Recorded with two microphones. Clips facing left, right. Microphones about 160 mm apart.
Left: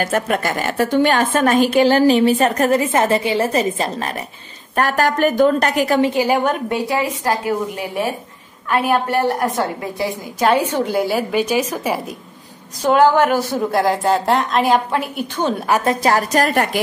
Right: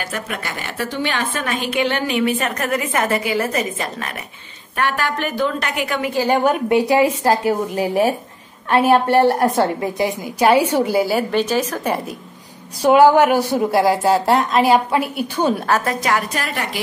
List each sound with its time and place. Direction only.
0.0 s a woman's voice: 45° left (ahead or behind)
6.7 s a woman's voice: 20° right (ahead or behind)
7.2 s a woman's voice: 35° right (ahead or behind); by 11.4 s centre (ahead or behind)
11.4 s a woman's voice: 10° left (ahead or behind)
12.8 s a woman's voice: 10° right (ahead or behind)
15.6 s a woman's voice: 15° left (ahead or behind)
15.9 s a woman's voice: 30° left (ahead or behind)